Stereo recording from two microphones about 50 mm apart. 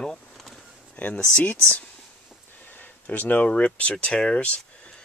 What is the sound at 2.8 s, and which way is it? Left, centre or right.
Speech, left.